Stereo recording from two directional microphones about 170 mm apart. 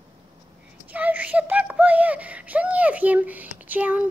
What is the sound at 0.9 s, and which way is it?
Speech, 10° right (ahead or behind).